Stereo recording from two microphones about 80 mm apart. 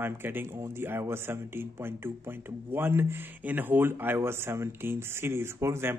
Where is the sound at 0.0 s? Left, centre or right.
Right.